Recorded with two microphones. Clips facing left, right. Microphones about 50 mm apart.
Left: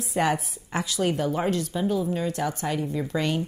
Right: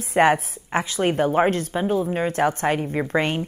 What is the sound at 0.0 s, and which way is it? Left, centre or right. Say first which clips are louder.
A woman's voice: right 7 dB; right.